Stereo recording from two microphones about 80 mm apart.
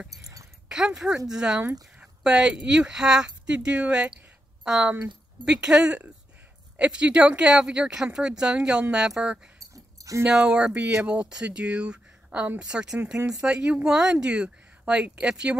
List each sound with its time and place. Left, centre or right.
0.7 s speech: centre
2.0 s a sound: centre
2.6 s speech: centre
9.6 s dog: right
10.3 s speech: centre